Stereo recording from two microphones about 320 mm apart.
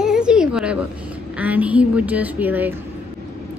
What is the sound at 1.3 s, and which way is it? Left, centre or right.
A woman's voice, centre.